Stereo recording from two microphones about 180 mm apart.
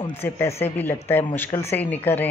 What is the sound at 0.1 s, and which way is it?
Speech, 15° left (ahead or behind).